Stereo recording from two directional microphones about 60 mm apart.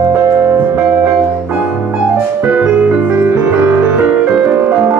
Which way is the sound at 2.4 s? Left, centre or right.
Centre.